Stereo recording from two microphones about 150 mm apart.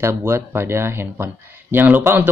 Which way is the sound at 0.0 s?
15° right (ahead or behind).